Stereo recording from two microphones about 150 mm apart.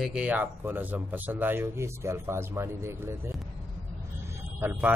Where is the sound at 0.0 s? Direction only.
5° right (ahead or behind).